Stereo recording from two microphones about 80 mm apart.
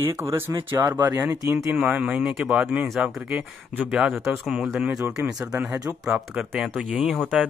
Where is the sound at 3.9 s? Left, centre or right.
Centre.